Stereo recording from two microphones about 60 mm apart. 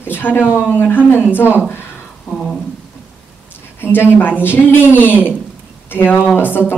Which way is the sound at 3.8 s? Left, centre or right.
Left.